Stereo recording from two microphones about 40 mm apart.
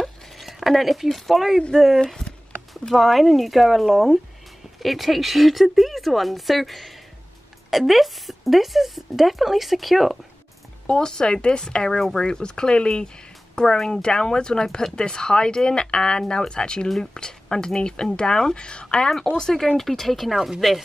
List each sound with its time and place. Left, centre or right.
0.0 s a sound: centre
1.0 s speech: centre
2.2 s a sound: centre
2.9 s speech: centre
10.9 s speech: left
13.7 s speech: centre
14.0 s speech: centre
19.3 s speech: centre
20.3 s speech: centre